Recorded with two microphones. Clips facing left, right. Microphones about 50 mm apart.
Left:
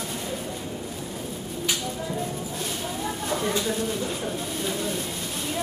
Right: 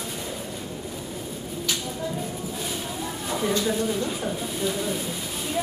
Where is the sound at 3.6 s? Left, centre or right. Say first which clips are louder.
Right 2 dB; centre.